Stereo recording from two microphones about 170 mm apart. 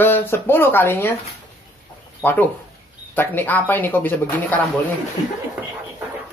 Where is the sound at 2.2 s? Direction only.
10° left (ahead or behind).